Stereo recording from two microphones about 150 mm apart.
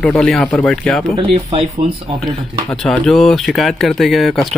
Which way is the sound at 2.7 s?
5° left (ahead or behind).